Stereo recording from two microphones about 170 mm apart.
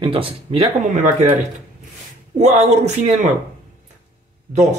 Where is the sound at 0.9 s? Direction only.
45° right (ahead or behind).